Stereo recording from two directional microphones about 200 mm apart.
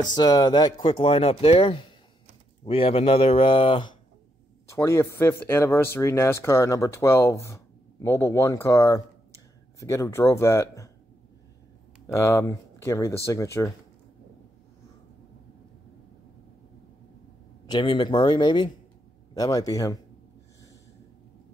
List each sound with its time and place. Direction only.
0.1 s speech: 20° left (ahead or behind)
4.6 s speech: 15° left (ahead or behind)
12.1 s speech: 15° left (ahead or behind)
17.6 s speech: 20° left (ahead or behind)